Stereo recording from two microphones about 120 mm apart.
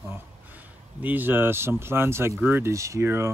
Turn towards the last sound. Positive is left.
turn(degrees=-20)  # may be behind; listen again after turning